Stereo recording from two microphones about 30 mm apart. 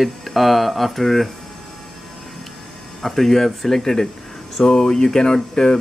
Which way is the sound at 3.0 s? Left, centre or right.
Centre.